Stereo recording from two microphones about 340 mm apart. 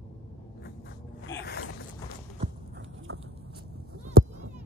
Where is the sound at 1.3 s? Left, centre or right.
Centre.